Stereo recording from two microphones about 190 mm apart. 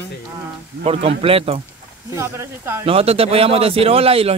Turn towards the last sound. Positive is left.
turn(degrees=-30)  # may be behind; listen again after turning